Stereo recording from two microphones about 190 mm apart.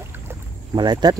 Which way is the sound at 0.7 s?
20° right (ahead or behind).